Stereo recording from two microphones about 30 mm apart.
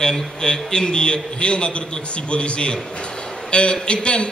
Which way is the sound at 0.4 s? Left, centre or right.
Left.